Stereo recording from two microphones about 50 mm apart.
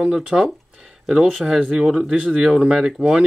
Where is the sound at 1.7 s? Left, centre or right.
Centre.